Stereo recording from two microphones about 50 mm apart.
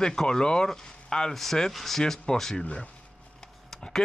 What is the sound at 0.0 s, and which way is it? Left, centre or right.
Speech, centre.